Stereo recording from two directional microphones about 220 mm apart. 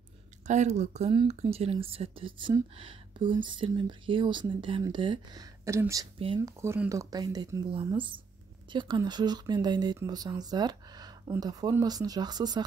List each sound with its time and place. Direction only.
0.5 s speech: 30° right (ahead or behind)